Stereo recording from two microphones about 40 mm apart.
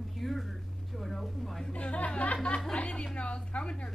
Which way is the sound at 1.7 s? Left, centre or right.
Left.